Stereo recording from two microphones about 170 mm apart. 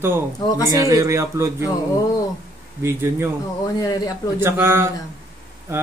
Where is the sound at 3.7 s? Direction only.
20° left (ahead or behind).